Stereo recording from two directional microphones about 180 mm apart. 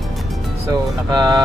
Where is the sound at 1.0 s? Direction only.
20° right (ahead or behind).